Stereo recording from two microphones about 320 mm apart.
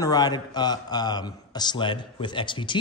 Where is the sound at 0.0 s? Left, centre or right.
Centre.